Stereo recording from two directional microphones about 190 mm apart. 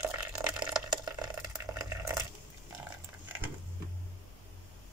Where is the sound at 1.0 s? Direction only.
20° right (ahead or behind).